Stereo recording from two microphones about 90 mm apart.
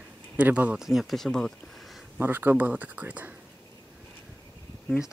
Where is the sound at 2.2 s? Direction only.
25° right (ahead or behind).